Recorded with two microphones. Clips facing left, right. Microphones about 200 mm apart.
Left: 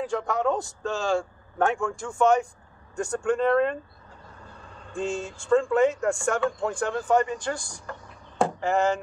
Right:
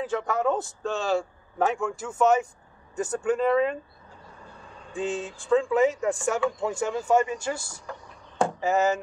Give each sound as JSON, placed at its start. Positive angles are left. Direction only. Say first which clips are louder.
{"t": 0.0, "sound": "speech", "louder": "even", "side_deg": 0}
{"t": 4.9, "sound": "speech", "louder": "even", "side_deg": 0}
{"t": 8.4, "sound": "a sound", "louder": "even", "side_deg": 0}